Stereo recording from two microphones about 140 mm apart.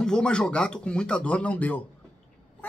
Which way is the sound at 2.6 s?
15° left (ahead or behind).